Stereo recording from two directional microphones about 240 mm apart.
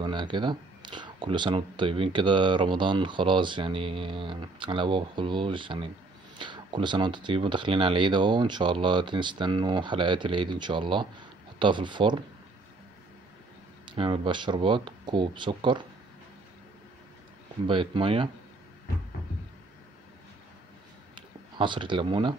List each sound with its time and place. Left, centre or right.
0.0 s speech: centre
13.8 s speech: right
17.6 s speech: right
21.5 s speech: centre